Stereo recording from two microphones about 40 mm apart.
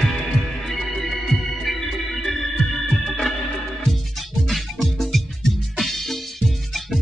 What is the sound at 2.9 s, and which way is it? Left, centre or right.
Organ, centre.